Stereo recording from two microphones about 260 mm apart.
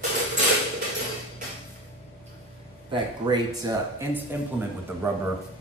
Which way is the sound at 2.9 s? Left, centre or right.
Centre.